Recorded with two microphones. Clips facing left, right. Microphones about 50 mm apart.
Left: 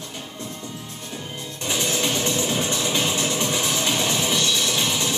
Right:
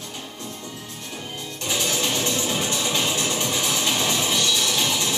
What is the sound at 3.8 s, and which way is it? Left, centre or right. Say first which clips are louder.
Music: even; centre.